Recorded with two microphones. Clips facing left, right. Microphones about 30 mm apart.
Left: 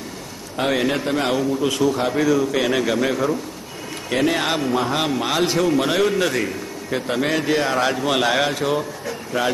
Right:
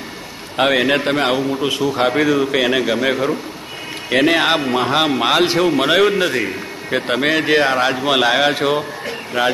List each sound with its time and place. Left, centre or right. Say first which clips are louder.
0.7 s a man's voice: right 5 dB; right
2.0 s a man's voice: right 3 dB; right
6.2 s a man's voice: right 3 dB; right
6.9 s a man's voice: right 4 dB; right
7.7 s a man's voice: right 3 dB; right
8.5 s a man's voice: right 5 dB; right